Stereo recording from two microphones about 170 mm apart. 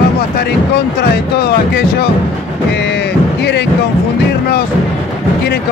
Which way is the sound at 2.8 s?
85° left.